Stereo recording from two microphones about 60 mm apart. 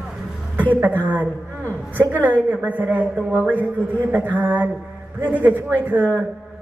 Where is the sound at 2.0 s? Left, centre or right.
Right.